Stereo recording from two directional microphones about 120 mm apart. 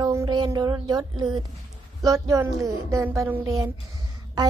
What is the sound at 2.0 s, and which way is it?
A woman's voice, 30° right (ahead or behind).